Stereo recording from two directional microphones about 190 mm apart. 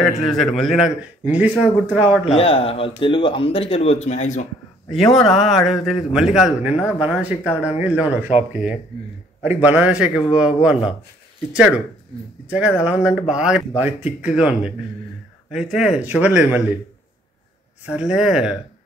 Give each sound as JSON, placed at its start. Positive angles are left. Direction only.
{"t": 0.0, "sound": "a man's voice", "side_deg": 0}
{"t": 2.2, "sound": "speech", "side_deg": 30}
{"t": 4.9, "sound": "a man's voice", "side_deg": 0}
{"t": 9.4, "sound": "a man's voice", "side_deg": -10}
{"t": 17.8, "sound": "a man's voice", "side_deg": -5}